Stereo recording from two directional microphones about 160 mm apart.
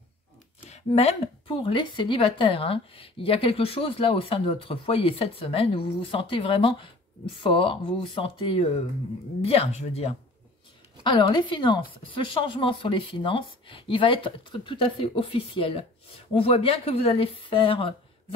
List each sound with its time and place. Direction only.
0.7 s a woman's voice: 40° left (ahead or behind)
11.1 s a woman's voice: 30° left (ahead or behind)